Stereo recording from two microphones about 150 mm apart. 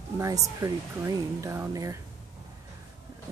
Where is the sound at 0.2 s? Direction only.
20° right (ahead or behind).